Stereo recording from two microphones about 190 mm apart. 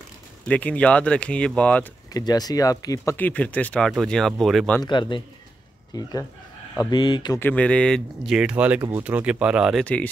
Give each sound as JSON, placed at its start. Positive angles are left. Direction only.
{"t": 0.5, "sound": "speech", "side_deg": 5}
{"t": 2.1, "sound": "speech", "side_deg": 20}
{"t": 4.8, "sound": "speech", "side_deg": 25}
{"t": 7.3, "sound": "speech", "side_deg": 10}